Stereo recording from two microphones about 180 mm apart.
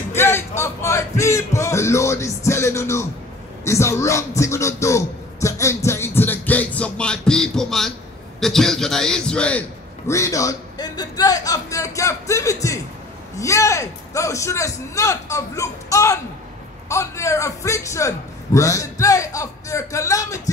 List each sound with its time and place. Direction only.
0.1 s music: 15° left (ahead or behind)
3.6 s a man's voice: 15° left (ahead or behind)
5.9 s music: 15° left (ahead or behind)
8.4 s a man's voice: centre (ahead or behind); by 20.5 s 20° left (ahead or behind)